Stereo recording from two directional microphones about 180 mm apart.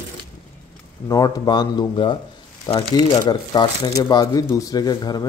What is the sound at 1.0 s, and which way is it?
Speech, 20° left (ahead or behind).